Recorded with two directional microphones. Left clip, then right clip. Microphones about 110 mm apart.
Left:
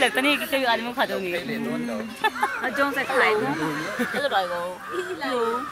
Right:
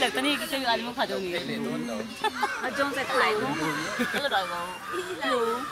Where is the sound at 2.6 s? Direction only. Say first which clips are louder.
Left 4 dB; 40° left (ahead or behind).